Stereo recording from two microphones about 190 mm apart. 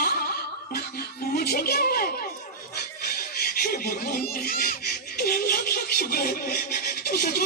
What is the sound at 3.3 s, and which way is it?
Speech, 55° left (ahead or behind).